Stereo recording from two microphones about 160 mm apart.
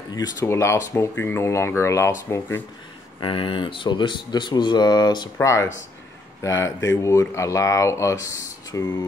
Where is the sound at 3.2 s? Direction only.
35° left (ahead or behind).